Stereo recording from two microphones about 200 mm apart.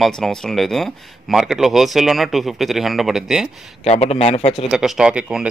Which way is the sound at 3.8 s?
30° left (ahead or behind).